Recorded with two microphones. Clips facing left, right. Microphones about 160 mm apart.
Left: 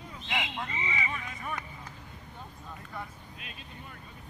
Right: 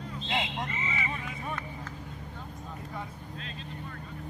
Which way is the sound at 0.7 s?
15° left (ahead or behind).